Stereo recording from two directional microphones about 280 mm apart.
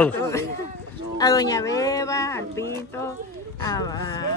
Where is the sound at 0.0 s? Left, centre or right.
Centre.